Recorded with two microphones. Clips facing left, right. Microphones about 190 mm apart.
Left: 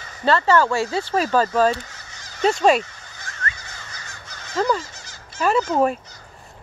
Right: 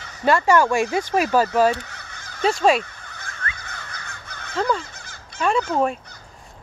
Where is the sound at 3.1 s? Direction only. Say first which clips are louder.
Left 2 dB; 55° right (ahead or behind).